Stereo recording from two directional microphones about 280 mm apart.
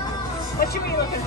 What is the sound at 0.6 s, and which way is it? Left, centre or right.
Music, left.